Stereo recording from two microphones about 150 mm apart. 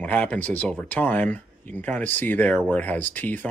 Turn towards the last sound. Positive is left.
turn(degrees=10)  # may be behind; listen again after turning